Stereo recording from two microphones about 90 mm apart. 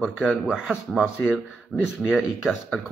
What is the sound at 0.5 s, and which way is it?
Speech, 10° right (ahead or behind).